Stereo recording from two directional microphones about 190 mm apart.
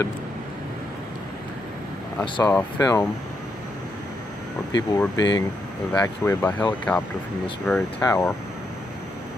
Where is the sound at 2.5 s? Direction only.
15° left (ahead or behind).